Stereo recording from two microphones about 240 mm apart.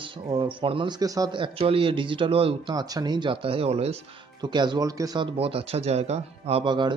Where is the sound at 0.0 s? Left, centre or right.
Right.